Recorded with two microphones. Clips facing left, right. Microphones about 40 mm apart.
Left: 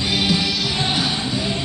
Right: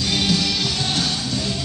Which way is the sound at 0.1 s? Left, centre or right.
Centre.